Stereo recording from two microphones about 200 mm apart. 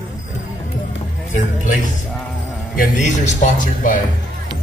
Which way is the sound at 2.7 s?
35° left (ahead or behind).